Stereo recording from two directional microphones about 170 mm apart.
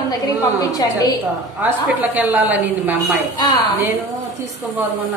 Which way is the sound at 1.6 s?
10° right (ahead or behind).